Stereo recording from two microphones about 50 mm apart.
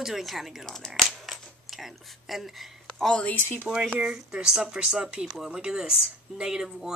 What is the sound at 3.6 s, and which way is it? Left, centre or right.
Speech, centre.